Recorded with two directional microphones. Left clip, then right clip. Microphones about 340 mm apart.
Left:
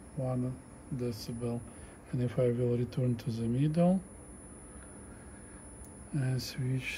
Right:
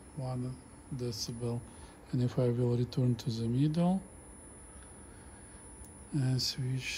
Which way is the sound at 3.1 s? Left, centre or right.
Centre.